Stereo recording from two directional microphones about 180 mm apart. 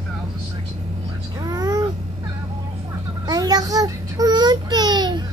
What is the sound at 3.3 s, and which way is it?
Child singing, 20° right (ahead or behind).